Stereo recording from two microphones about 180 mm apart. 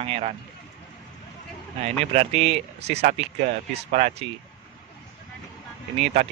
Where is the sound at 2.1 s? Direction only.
35° right (ahead or behind).